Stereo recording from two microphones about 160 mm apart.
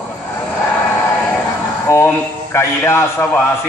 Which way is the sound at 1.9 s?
15° left (ahead or behind).